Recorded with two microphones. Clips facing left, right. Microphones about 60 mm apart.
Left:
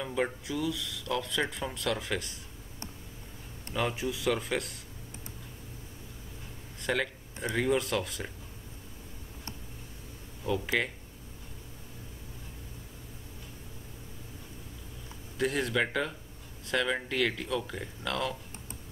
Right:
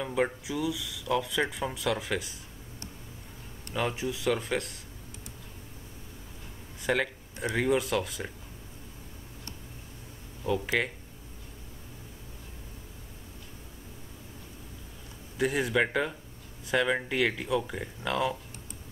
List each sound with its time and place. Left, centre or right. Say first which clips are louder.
0.0 s speech: right 3 dB; centre
3.7 s speech: right 1 dB; centre
6.8 s a sound: right 3 dB; centre
7.5 s speech: right 2 dB; centre
10.4 s speech: right 1 dB; centre
15.3 s speech: right 2 dB; centre